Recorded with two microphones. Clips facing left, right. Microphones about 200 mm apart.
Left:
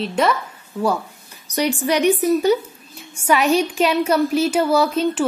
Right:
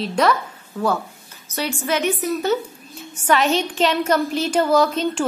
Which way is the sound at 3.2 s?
10° left (ahead or behind).